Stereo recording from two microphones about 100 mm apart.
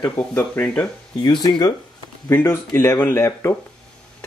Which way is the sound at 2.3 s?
20° left (ahead or behind).